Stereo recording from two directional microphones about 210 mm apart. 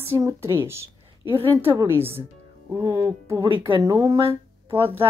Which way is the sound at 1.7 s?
25° right (ahead or behind).